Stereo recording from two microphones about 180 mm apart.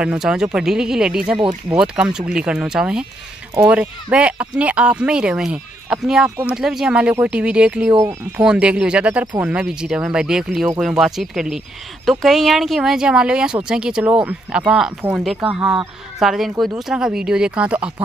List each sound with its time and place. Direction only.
0.0 s speech: 5° right (ahead or behind)